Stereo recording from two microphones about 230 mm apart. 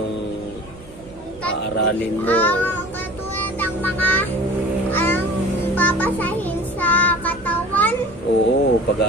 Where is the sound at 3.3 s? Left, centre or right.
Centre.